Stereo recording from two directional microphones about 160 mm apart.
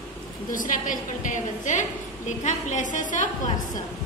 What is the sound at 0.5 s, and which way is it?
A woman's voice, 55° left (ahead or behind).